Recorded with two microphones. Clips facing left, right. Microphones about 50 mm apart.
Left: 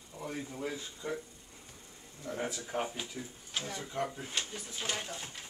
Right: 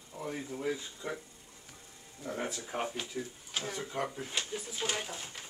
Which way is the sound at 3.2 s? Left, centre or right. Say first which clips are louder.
Right 2 dB; centre.